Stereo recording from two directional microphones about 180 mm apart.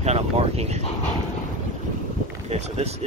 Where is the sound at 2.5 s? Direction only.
35° right (ahead or behind).